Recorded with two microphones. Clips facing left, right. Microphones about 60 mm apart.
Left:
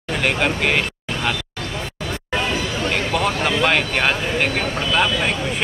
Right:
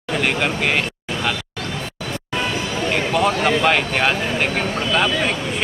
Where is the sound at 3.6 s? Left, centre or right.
Centre.